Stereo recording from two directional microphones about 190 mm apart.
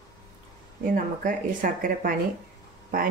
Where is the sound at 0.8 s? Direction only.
45° right (ahead or behind).